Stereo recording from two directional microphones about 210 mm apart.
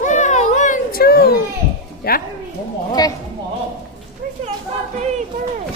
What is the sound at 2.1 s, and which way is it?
Speech, 45° left (ahead or behind).